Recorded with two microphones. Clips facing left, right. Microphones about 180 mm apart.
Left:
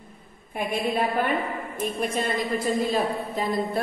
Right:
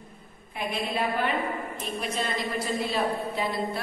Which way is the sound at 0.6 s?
50° left (ahead or behind).